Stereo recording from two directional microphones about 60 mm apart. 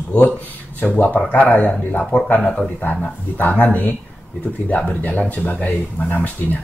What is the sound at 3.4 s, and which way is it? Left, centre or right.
Speech, left.